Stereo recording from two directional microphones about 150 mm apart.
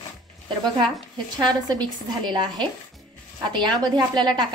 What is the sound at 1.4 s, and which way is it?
A woman's voice, 30° right (ahead or behind).